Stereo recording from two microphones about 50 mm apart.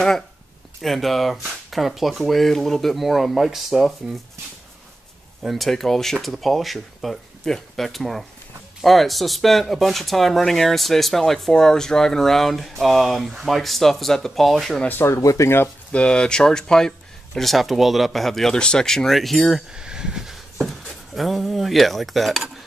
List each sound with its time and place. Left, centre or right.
0.7 s speech: centre
5.4 s speech: centre
15.0 s speech: left
15.9 s speech: left; by 19.6 s centre
19.7 s speech: centre
20.5 s speech: centre